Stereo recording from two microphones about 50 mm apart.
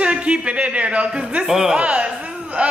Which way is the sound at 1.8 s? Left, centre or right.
Right.